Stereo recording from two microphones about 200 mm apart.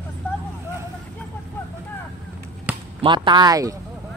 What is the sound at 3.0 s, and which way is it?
Speech, 25° right (ahead or behind).